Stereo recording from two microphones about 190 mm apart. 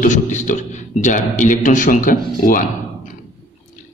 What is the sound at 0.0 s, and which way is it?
A man's voice, 40° left (ahead or behind).